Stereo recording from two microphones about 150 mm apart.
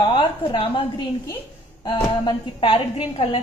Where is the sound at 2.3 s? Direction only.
35° left (ahead or behind).